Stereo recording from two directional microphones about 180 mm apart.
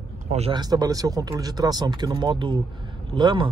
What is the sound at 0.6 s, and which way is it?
Speech, 20° right (ahead or behind).